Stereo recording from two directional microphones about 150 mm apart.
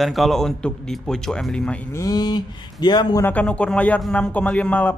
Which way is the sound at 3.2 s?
10° left (ahead or behind).